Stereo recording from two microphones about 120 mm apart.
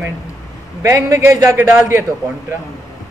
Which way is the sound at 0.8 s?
25° right (ahead or behind).